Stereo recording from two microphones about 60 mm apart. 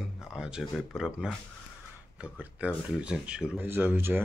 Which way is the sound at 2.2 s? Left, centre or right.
Right.